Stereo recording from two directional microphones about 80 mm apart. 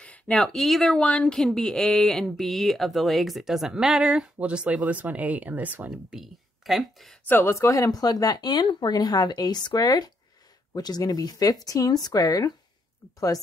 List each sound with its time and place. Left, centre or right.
0.0 s speech: centre
1.0 s speech: centre
6.1 s speech: centre
7.2 s speech: left
7.5 s speech: left